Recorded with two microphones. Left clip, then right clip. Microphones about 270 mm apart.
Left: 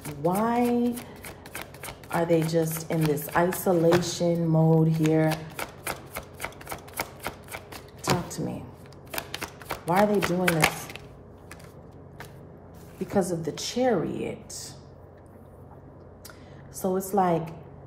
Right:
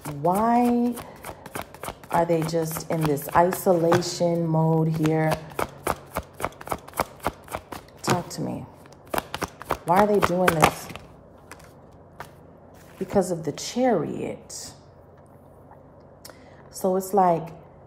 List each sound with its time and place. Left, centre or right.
0.0 s shuffling cards: right
4.2 s speech: right
4.8 s shuffling cards: right
13.1 s speech: right
17.1 s speech: right